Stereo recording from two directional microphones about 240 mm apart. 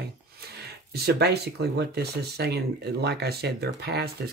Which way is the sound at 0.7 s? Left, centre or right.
Right.